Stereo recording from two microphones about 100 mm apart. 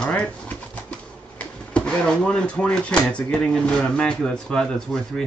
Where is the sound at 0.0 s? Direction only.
10° left (ahead or behind).